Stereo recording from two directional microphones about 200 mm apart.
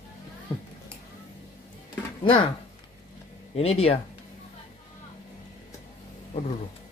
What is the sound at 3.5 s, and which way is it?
Speech, 30° left (ahead or behind).